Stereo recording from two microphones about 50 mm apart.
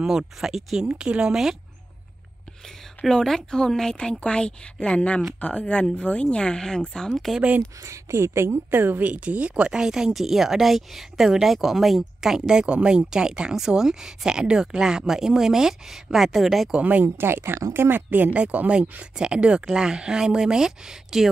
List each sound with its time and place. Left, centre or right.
0.0 s speech: centre
0.8 s speech: centre
3.0 s speech: centre
7.8 s speech: right
8.6 s a woman's voice: right
9.7 s speech: centre
17.0 s a woman's voice: right
18.3 s speech: right; by 21.3 s centre